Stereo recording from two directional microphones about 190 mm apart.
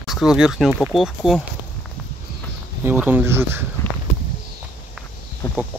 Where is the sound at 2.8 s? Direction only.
10° right (ahead or behind).